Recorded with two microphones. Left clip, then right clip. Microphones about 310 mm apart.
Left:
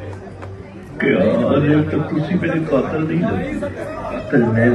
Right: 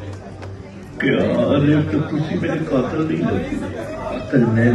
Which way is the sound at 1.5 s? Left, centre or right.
Centre.